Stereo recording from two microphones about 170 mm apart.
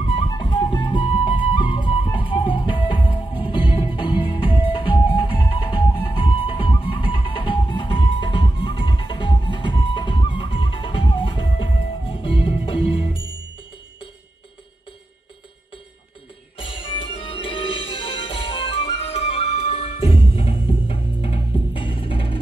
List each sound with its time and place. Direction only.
0.0 s music: 30° left (ahead or behind)
16.5 s music: 30° left (ahead or behind)